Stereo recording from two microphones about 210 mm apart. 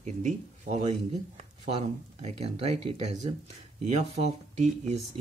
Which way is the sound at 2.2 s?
30° right (ahead or behind).